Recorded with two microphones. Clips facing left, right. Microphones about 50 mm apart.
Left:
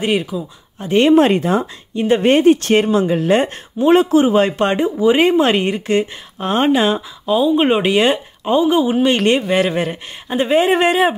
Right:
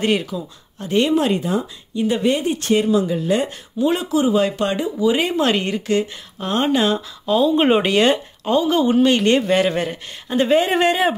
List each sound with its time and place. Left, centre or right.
0.0 s speech: centre
0.8 s speech: left
7.2 s speech: centre; by 9.4 s left
9.4 s speech: centre